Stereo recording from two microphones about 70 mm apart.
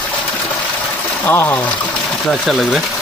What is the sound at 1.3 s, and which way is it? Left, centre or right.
Speech, left.